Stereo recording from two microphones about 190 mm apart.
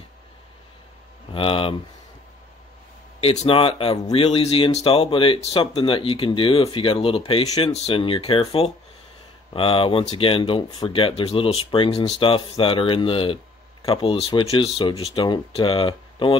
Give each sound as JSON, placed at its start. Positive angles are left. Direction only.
{"t": 1.3, "sound": "speech", "side_deg": 30}
{"t": 3.2, "sound": "speech", "side_deg": 30}